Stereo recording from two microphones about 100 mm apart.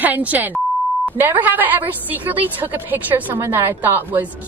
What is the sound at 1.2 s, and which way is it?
A woman's voice, 20° right (ahead or behind).